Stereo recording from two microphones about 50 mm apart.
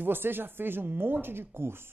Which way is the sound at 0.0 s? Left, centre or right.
Right.